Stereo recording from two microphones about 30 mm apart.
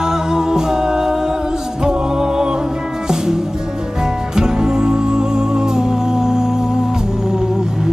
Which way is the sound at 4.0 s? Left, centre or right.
Right.